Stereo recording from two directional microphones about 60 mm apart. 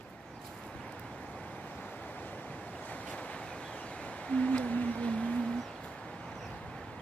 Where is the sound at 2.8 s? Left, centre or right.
Left.